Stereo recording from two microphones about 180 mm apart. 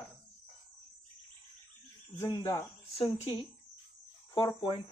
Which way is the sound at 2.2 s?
20° left (ahead or behind).